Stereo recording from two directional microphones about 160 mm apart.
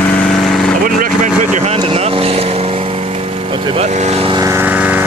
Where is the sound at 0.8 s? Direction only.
60° right (ahead or behind).